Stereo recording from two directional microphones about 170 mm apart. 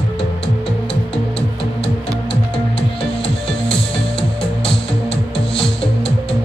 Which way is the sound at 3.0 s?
30° left (ahead or behind).